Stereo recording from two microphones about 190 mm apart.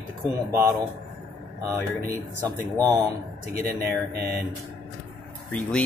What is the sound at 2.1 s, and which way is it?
Speech, 20° right (ahead or behind).